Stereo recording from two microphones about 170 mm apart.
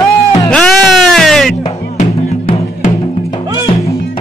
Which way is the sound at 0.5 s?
5° left (ahead or behind).